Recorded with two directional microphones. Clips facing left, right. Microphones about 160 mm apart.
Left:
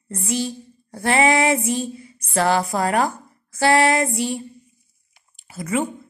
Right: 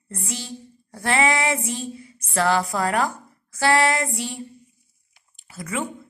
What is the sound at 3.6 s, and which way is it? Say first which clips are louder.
Female singing: left 3 dB; 20° left (ahead or behind).